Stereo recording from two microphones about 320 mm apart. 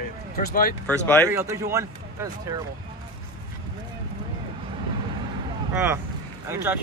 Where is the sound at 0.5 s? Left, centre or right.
Left.